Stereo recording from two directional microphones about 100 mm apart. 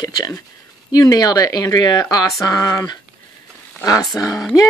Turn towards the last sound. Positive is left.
turn(degrees=35)  # may be behind; listen again after turning